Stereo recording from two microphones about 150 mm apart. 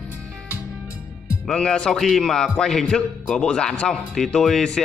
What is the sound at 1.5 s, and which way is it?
A man's voice, 5° left (ahead or behind).